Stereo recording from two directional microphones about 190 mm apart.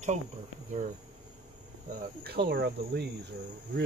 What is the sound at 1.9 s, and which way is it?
Cricket, 55° right (ahead or behind).